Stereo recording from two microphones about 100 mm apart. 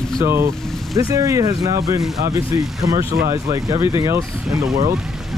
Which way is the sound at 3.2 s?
30° right (ahead or behind).